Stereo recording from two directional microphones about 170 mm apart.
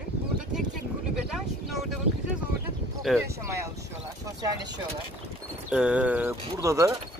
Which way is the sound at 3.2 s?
15° right (ahead or behind).